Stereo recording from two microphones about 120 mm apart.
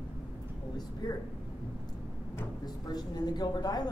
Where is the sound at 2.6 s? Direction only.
35° left (ahead or behind).